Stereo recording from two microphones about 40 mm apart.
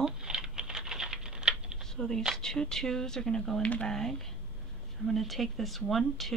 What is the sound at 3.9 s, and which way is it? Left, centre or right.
Speech, centre.